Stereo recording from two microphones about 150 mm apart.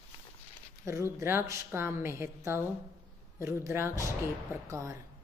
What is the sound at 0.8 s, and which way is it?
A woman's voice, 20° right (ahead or behind).